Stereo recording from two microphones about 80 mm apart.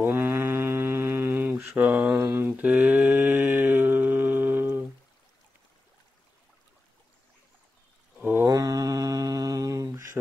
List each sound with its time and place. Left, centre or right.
0.0 s mantra: right
1.8 s mantra: centre
2.1 s mantra: right
8.2 s a sound: right
8.5 s mantra: right